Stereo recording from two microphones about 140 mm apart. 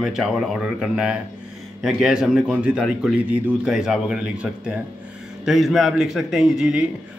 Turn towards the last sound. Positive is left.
turn(degrees=-5)  # may be behind; listen again after turning